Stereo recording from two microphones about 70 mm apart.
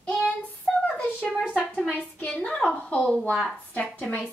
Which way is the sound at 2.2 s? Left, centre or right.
Centre.